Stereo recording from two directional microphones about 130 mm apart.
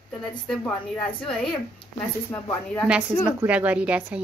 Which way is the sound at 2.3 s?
20° left (ahead or behind).